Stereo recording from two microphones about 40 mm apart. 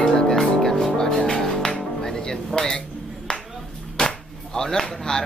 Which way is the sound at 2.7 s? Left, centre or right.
Left.